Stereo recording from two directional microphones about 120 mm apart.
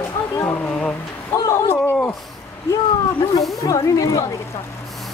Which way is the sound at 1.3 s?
20° left (ahead or behind).